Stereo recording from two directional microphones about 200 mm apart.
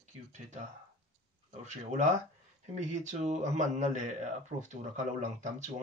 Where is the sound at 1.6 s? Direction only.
35° right (ahead or behind).